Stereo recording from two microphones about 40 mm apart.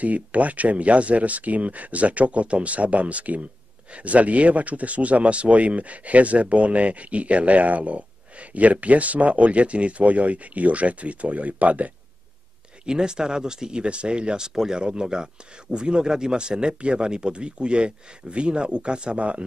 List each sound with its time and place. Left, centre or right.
0.0 s speech: right
12.8 s speech: right